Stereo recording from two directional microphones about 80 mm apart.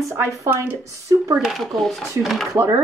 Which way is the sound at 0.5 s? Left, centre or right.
Right.